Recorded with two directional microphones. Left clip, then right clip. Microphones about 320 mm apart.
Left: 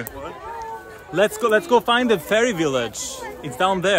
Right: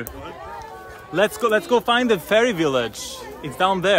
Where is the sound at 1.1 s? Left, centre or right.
Centre.